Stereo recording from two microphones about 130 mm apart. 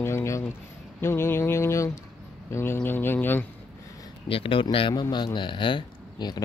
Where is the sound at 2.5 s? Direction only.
15° left (ahead or behind).